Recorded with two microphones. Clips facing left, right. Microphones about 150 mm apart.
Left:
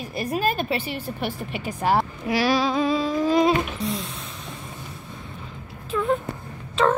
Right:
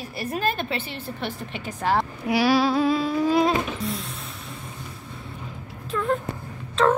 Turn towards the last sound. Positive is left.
turn(degrees=5)  # may be behind; listen again after turning